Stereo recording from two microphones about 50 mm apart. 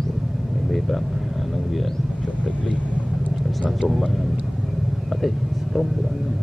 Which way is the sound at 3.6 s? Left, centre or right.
Centre.